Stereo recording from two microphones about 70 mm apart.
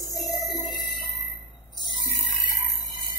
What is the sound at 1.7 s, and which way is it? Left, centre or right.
Music, left.